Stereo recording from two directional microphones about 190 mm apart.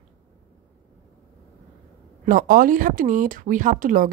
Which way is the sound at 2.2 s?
45° right (ahead or behind).